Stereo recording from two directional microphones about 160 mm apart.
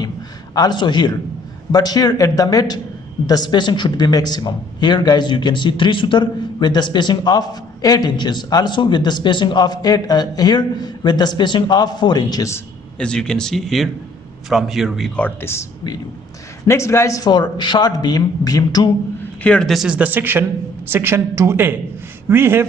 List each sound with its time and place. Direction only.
0.6 s a man's voice: 25° left (ahead or behind)
13.0 s speech: 5° left (ahead or behind)
16.6 s a man's voice: 15° left (ahead or behind)
19.4 s speech: 5° left (ahead or behind); by 22.7 s 15° right (ahead or behind)